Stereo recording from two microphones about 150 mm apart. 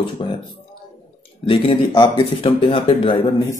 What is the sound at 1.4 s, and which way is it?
Speech, 35° left (ahead or behind).